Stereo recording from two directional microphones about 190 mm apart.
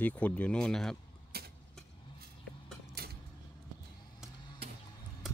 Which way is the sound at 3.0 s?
55° right (ahead or behind).